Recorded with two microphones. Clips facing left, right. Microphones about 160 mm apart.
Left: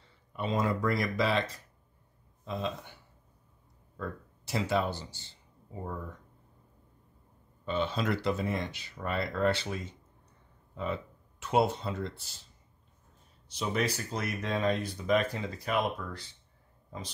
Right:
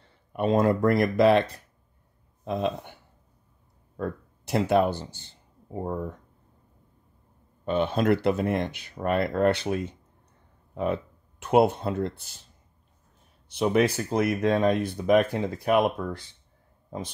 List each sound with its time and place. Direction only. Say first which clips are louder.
0.3 s speech: right 8 dB; 55° right (ahead or behind)
7.6 s speech: right 7 dB; 55° right (ahead or behind)
13.5 s speech: right 9 dB; 60° right (ahead or behind)